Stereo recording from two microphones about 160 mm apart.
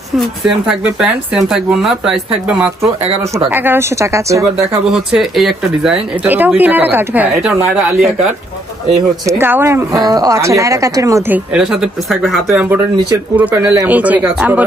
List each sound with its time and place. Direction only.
0.5 s speech: 5° right (ahead or behind)
4.8 s speech: centre (ahead or behind)
6.2 s speech: 10° right (ahead or behind)
9.4 s speech: 15° right (ahead or behind)
12.6 s speech: 10° right (ahead or behind)